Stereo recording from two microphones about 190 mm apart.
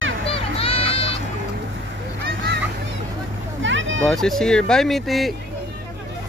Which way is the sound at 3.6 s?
80° right.